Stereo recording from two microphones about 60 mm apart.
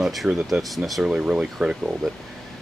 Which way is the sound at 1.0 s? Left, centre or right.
Centre.